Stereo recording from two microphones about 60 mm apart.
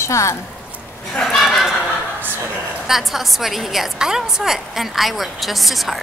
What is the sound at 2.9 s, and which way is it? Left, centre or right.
A woman's voice, centre.